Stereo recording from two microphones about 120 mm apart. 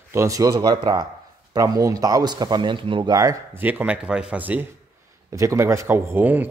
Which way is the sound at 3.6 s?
15° right (ahead or behind).